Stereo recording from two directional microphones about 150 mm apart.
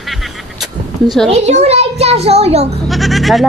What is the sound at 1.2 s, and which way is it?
A child's voice, 50° right (ahead or behind).